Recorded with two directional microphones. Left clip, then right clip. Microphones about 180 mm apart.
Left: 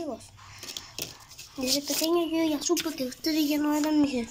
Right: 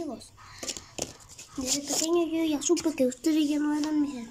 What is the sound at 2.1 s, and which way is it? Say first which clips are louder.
Speech: even; 5° right (ahead or behind).